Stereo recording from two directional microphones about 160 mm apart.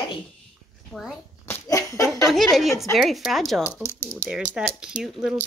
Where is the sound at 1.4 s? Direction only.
20° left (ahead or behind).